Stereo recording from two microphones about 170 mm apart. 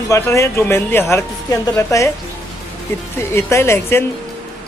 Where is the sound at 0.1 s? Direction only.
15° left (ahead or behind).